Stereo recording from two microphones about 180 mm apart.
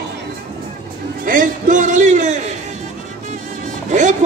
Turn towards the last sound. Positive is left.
turn(degrees=-45)  # may be behind; listen again after turning